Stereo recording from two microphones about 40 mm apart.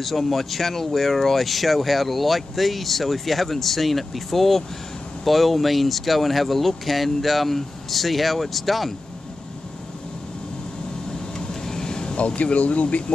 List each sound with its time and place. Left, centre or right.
0.0 s speech: centre
11.1 s vehicle: centre
12.2 s speech: left